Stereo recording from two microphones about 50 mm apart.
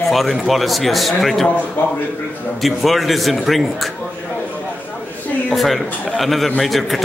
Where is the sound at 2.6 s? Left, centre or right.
Centre.